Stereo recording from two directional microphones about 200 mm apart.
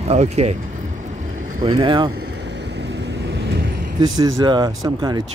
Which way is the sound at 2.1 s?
60° right (ahead or behind).